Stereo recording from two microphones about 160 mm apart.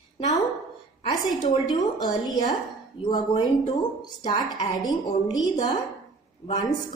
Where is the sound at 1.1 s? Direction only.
25° left (ahead or behind).